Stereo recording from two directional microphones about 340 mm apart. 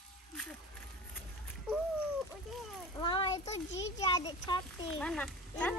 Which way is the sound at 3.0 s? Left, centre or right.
Centre.